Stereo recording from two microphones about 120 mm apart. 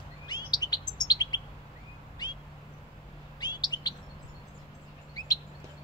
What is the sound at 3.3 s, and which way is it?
Chirp, 35° left (ahead or behind).